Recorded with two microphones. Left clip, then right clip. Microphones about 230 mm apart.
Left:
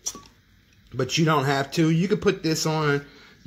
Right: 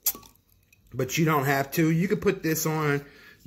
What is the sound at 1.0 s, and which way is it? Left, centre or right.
A man's voice, centre.